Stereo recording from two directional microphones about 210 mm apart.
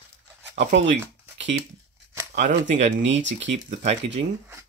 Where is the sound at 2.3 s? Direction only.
35° right (ahead or behind).